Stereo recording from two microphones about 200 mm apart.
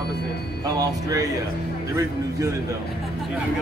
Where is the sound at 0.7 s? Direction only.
20° right (ahead or behind).